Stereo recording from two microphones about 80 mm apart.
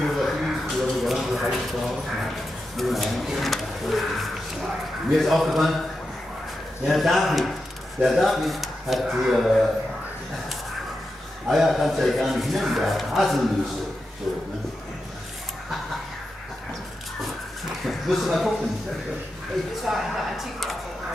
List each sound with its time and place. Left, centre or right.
0.0 s a sound: centre
2.8 s a man's voice: centre
6.9 s a man's voice: centre
11.4 s a man's voice: centre
17.8 s speech: centre
19.8 s a sound: centre